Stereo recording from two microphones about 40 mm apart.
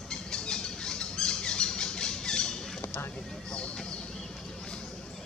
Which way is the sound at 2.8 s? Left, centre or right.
Left.